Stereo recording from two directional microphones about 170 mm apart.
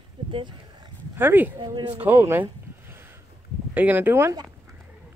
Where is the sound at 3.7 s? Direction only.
10° right (ahead or behind).